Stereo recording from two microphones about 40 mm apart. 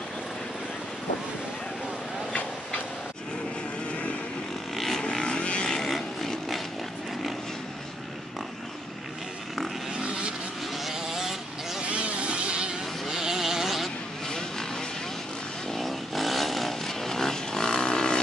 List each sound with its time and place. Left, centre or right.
4.7 s vehicle: centre
5.2 s vehicle: left
5.7 s a sound: centre
9.9 s vehicle: right
10.7 s vehicle: centre
11.8 s vehicle: right
13.1 s a sound: centre
14.2 s vehicle: centre
15.7 s vehicle: centre